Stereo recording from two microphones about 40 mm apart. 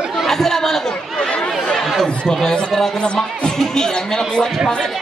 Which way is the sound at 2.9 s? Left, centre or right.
Left.